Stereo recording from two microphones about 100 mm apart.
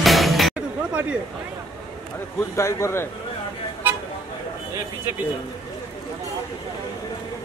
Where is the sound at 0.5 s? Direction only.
15° right (ahead or behind).